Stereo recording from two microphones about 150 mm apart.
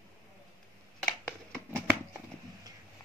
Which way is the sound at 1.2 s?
15° right (ahead or behind).